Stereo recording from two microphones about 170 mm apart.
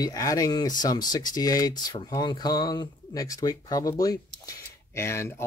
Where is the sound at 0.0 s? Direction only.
20° left (ahead or behind).